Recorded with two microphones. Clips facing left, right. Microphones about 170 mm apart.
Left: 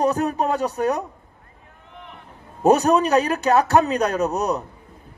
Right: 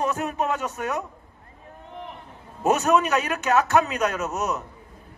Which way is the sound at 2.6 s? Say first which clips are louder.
Left 4 dB; 35° left (ahead or behind).